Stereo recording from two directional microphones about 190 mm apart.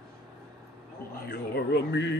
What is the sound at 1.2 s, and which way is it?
Speech, 55° left (ahead or behind).